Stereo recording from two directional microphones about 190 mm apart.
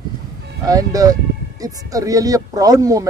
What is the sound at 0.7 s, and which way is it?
Speech, 20° right (ahead or behind).